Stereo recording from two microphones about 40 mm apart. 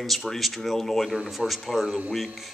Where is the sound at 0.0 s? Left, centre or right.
Centre.